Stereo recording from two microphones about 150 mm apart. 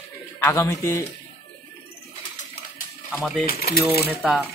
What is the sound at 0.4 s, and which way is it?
Speech, 15° left (ahead or behind).